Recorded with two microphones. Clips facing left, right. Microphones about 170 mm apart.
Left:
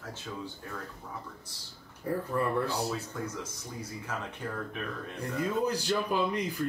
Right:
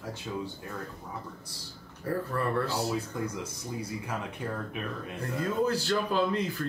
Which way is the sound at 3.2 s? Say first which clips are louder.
Right 3 dB; 10° right (ahead or behind).